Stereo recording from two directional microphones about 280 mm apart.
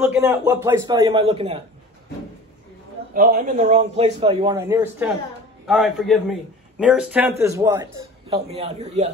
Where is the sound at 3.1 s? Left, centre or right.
Right.